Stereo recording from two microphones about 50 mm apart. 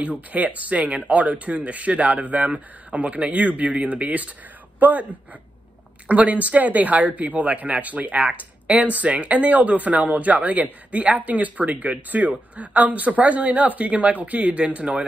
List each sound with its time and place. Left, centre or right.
0.0 s speech: right
6.0 s speech: right